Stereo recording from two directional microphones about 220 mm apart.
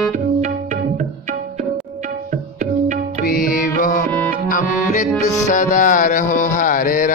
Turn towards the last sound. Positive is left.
turn(degrees=40)  # may be behind; listen again after turning